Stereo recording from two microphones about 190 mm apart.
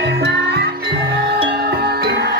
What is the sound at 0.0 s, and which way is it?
Music, 60° right (ahead or behind).